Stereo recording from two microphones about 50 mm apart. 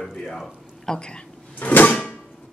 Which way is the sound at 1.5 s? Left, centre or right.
Left.